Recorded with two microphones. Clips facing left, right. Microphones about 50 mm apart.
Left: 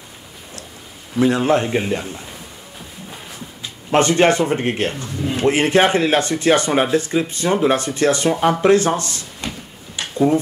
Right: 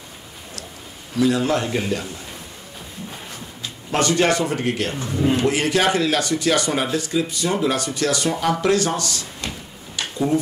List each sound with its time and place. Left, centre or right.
1.1 s a man's voice: left
3.9 s speech: left
4.9 s speech: centre
5.4 s speech: left